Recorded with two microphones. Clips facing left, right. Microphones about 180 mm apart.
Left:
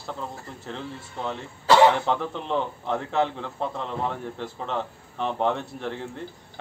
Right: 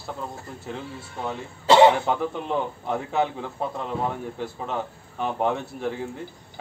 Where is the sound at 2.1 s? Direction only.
10° right (ahead or behind).